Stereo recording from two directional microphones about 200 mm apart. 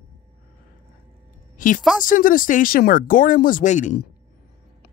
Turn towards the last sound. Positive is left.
turn(degrees=40)  # may be behind; listen again after turning